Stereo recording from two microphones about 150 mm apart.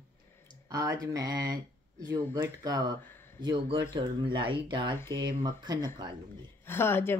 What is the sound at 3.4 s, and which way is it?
Speech, 30° right (ahead or behind).